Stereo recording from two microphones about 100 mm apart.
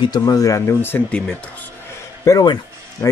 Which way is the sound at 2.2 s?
30° left (ahead or behind).